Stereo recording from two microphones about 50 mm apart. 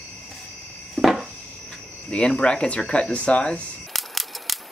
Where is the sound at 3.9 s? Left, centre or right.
Centre.